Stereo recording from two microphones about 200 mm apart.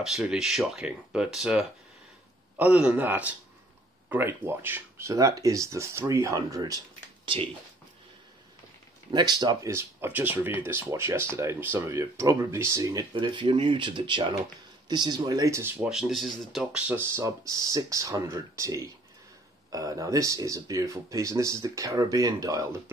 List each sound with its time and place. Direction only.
0.0 s speech: centre (ahead or behind); by 6.8 s 15° right (ahead or behind)
9.1 s speech: 20° right (ahead or behind)